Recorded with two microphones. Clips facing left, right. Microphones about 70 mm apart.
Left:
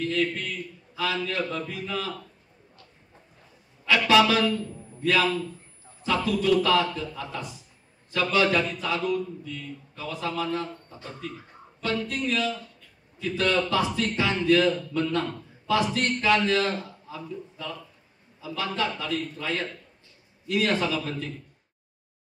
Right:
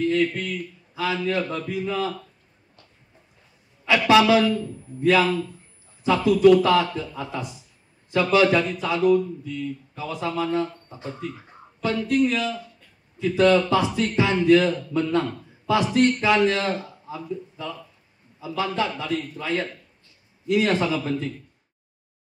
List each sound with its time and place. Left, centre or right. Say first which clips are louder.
0.0 s a man's voice: right 5 dB; centre
3.8 s a man's voice: right 3 dB; centre
18.8 s a man's voice: right 3 dB; centre